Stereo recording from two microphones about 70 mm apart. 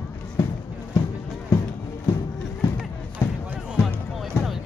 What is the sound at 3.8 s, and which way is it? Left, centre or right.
Music, centre.